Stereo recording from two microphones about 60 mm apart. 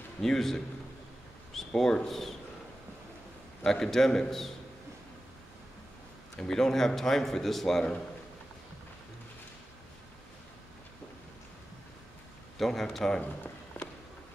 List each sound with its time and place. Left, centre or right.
0.2 s a man's voice: centre
3.6 s a man's voice: centre
6.3 s a man's voice: centre
12.5 s speech: centre
13.2 s a sound: left